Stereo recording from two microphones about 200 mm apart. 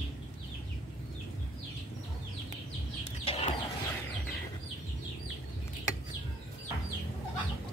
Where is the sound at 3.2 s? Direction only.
30° left (ahead or behind).